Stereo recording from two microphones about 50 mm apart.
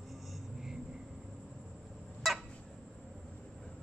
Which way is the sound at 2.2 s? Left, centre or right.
Centre.